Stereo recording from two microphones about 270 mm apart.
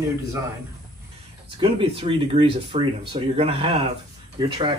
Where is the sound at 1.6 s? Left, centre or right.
Centre.